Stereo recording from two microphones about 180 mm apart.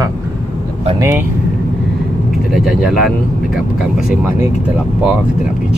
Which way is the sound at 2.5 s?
Centre (ahead or behind).